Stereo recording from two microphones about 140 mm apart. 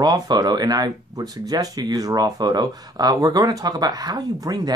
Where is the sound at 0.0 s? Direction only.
30° right (ahead or behind).